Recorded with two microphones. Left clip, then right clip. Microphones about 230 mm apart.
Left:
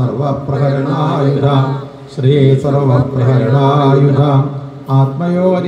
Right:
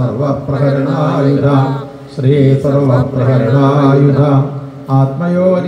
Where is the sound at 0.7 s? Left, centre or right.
Left.